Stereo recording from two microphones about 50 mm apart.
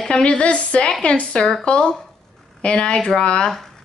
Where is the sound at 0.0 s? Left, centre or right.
Centre.